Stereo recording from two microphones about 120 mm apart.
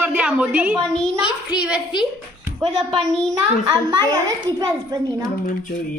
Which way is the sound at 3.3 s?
30° right (ahead or behind).